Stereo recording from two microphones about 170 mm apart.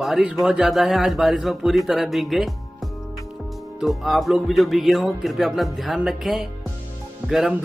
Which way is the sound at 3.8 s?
Centre (ahead or behind).